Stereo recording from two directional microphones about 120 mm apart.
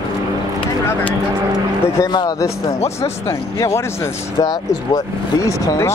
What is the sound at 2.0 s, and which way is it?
Speech, 35° left (ahead or behind).